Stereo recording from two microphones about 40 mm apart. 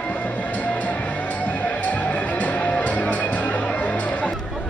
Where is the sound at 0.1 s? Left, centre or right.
Left.